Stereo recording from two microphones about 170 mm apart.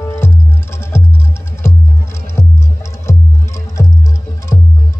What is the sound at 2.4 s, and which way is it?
Music, 15° left (ahead or behind).